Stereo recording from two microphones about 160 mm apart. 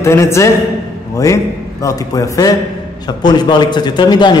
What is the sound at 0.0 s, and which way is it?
Speech, 15° left (ahead or behind).